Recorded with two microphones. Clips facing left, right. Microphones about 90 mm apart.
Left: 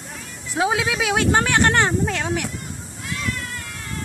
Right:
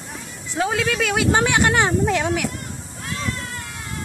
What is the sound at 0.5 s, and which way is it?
Speech, 10° left (ahead or behind).